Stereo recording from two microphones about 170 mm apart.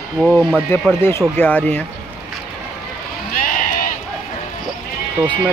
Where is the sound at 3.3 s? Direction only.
50° left (ahead or behind).